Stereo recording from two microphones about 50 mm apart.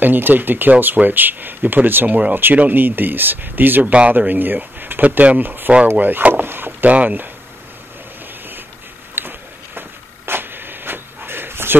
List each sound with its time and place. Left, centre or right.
0.0 s speech: right
2.0 s speech: right
3.8 s speech: right
4.2 s speech: right
5.0 s speech: right
6.4 s boat: right
6.9 s speech: right
9.2 s a sound: right